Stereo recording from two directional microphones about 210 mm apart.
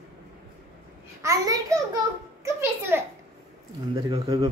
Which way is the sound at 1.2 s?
15° right (ahead or behind).